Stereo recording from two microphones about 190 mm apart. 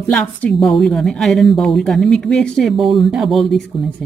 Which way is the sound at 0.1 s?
5° left (ahead or behind).